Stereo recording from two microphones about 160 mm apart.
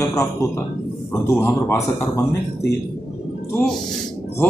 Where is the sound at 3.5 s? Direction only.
5° left (ahead or behind).